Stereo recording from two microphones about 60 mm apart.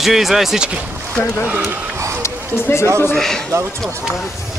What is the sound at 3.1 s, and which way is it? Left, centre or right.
Speech, centre.